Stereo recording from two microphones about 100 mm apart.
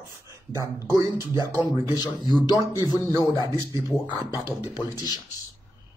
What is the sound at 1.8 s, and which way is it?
A man's voice, 40° left (ahead or behind).